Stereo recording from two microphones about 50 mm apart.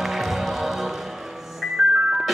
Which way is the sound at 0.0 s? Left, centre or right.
Centre.